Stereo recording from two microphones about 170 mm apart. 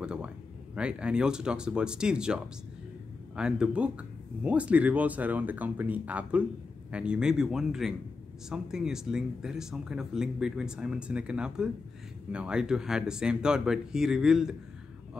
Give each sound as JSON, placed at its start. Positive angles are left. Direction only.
{"t": 0.0, "sound": "speech", "side_deg": -5}